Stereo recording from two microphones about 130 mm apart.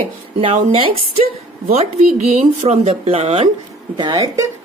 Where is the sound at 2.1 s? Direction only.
60° right (ahead or behind).